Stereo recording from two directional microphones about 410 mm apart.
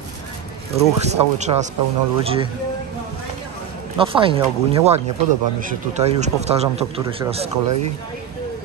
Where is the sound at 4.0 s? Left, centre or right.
Centre.